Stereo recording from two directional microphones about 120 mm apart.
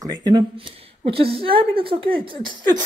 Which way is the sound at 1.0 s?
50° right (ahead or behind).